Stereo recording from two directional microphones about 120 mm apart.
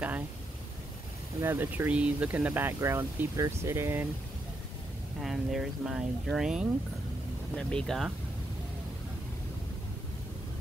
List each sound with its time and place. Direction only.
1.4 s speech: 20° right (ahead or behind)
5.2 s speech: 5° right (ahead or behind)
7.5 s speech: 5° left (ahead or behind)